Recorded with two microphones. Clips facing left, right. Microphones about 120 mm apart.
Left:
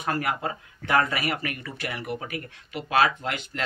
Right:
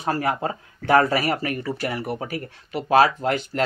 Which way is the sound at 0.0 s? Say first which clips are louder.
Right 4 dB; 30° right (ahead or behind).